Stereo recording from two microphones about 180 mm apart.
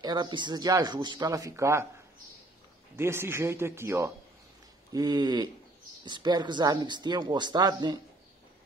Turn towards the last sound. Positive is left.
turn(degrees=-20)  # may be behind; listen again after turning